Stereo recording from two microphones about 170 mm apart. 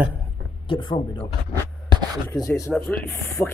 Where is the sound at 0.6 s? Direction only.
25° left (ahead or behind).